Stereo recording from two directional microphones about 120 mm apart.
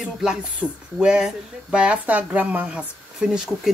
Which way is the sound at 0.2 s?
5° right (ahead or behind).